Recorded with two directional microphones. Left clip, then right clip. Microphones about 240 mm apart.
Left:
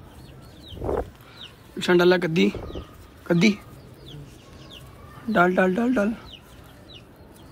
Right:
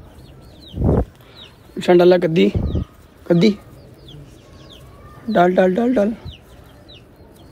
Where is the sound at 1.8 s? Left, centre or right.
Centre.